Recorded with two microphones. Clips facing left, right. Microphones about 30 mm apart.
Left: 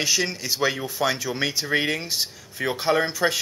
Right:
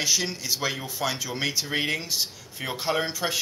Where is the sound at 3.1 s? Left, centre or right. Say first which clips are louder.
Left 6 dB; left.